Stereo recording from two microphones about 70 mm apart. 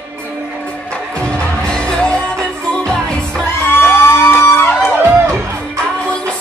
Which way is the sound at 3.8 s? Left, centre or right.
Left.